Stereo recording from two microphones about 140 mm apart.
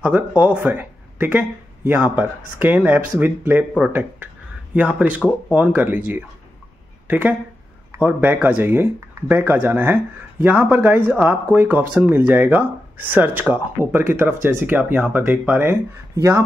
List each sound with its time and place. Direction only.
0.0 s speech: 10° right (ahead or behind)
4.7 s speech: 10° right (ahead or behind)